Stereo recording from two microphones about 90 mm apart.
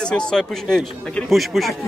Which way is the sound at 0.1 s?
5° left (ahead or behind).